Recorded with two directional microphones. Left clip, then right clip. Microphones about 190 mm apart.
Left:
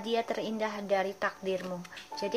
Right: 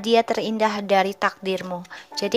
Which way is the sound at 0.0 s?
35° right (ahead or behind).